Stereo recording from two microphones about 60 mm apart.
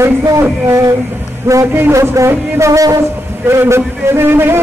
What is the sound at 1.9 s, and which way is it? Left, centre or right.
Music, right.